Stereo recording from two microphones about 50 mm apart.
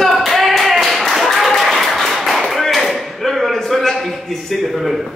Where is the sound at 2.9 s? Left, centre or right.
Centre.